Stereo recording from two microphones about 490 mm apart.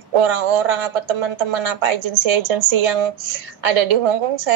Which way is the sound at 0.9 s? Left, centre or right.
Right.